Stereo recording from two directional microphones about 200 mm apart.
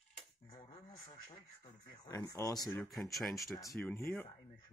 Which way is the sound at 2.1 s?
15° left (ahead or behind).